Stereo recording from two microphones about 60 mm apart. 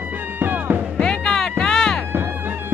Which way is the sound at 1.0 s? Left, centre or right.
Centre.